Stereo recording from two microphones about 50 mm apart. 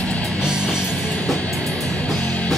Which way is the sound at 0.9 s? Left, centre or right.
Left.